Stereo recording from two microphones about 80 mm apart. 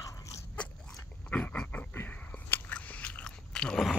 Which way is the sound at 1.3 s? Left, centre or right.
Centre.